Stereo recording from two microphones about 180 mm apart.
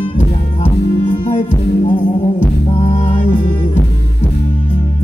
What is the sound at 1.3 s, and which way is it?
Music, 35° left (ahead or behind).